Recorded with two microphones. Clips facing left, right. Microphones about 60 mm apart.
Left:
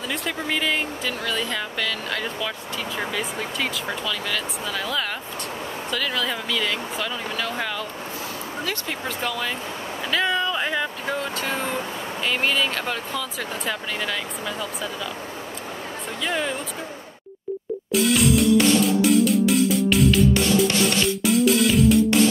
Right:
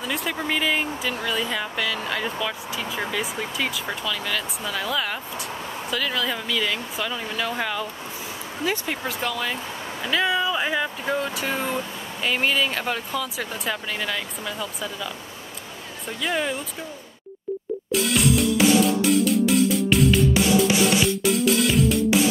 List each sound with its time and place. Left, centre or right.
0.1 s speech: centre
16.2 s speech: centre
17.9 s music: centre